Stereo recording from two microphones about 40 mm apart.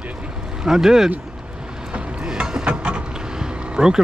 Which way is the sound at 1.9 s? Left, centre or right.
Centre.